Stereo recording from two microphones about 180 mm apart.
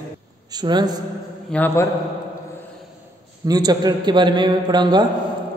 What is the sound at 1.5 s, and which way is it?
Speech, 10° left (ahead or behind).